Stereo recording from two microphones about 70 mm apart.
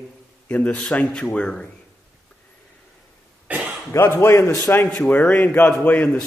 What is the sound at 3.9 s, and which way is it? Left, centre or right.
Speech, left.